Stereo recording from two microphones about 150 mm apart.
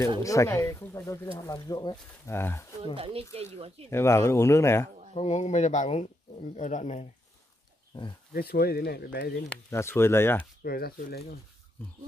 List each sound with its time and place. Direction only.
0.2 s speech: 20° left (ahead or behind)
2.3 s speech: 15° left (ahead or behind)
2.8 s speech: 40° right (ahead or behind)
3.9 s speech: 20° left (ahead or behind)
5.1 s speech: 45° left (ahead or behind)
8.3 s speech: 90° left
9.7 s speech: 15° left (ahead or behind)
10.6 s speech: 90° left